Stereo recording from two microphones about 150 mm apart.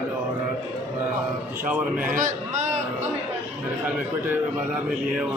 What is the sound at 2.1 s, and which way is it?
Speech, 60° right (ahead or behind).